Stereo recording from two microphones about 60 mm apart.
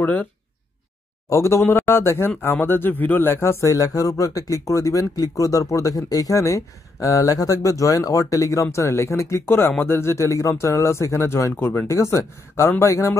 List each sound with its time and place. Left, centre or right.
0.0 s speech: left
1.3 s speech: left
3.6 s speech: left
8.7 s speech: left